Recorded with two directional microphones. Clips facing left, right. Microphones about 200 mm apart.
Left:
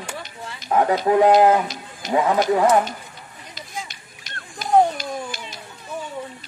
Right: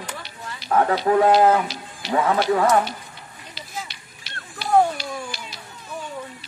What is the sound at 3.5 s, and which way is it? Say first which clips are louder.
Run: even; 45° left (ahead or behind).